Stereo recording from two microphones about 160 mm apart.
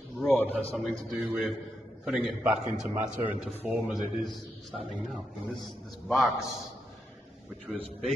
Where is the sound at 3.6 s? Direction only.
5° right (ahead or behind).